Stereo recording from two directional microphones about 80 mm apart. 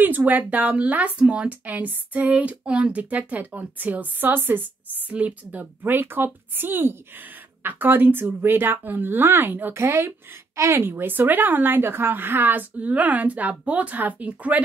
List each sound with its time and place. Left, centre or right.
0.0 s a woman's voice: right
9.8 s a woman's voice: right; by 14.6 s centre